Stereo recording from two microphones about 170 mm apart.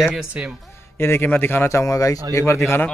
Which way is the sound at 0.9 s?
15° left (ahead or behind).